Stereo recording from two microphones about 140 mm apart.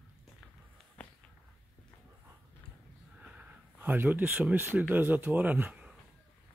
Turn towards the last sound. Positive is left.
turn(degrees=-10)  # may be behind; listen again after turning